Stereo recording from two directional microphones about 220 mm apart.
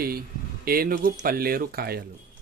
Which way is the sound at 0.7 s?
40° right (ahead or behind).